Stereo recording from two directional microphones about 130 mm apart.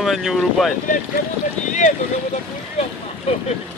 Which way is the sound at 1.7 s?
70° left (ahead or behind).